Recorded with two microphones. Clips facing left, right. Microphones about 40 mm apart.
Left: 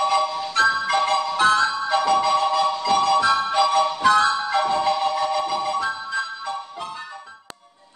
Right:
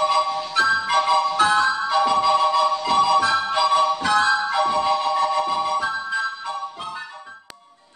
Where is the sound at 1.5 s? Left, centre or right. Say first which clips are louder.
Even; centre.